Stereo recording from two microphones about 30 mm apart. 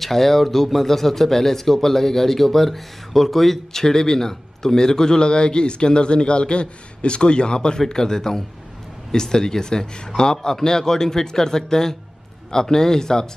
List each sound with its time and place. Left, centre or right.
0.0 s speech: centre
3.7 s a man's voice: centre